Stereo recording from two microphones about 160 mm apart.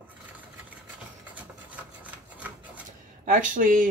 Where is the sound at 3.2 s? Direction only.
55° right (ahead or behind).